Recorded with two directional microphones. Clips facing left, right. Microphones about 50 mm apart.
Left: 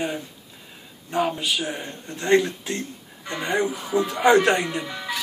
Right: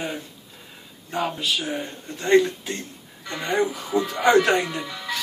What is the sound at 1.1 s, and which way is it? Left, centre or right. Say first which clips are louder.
Speech: left 2 dB; centre.